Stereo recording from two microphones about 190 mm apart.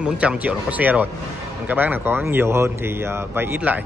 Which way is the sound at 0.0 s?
5° right (ahead or behind).